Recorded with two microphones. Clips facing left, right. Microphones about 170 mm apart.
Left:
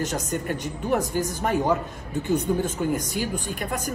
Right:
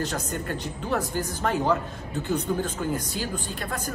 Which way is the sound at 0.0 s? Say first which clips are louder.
Left 2 dB; 20° left (ahead or behind).